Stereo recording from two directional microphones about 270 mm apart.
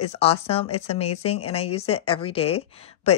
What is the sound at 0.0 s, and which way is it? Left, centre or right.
Speech, left.